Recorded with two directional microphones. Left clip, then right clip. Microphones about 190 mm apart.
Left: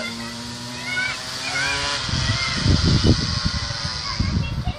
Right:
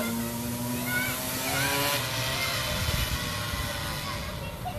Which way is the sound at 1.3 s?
5° left (ahead or behind).